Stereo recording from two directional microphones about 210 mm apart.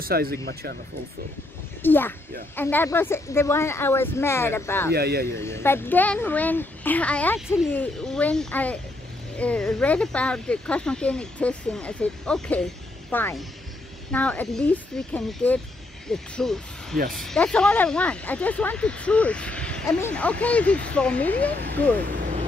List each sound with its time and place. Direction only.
0.0 s speech: 45° right (ahead or behind)
1.8 s a child's voice: 10° left (ahead or behind)
4.9 s speech: 50° right (ahead or behind)
5.2 s a child's voice: 10° left (ahead or behind)
21.5 s speech: 50° right (ahead or behind)